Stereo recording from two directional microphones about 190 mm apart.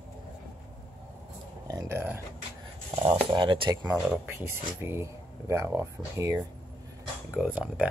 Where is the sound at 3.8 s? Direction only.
10° right (ahead or behind).